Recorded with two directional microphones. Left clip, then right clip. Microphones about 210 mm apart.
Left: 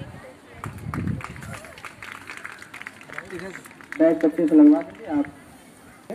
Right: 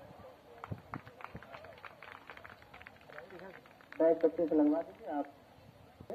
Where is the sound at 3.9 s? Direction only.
60° left (ahead or behind).